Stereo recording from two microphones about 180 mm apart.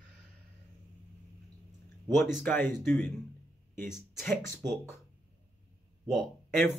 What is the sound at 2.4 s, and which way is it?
Speech, 10° left (ahead or behind).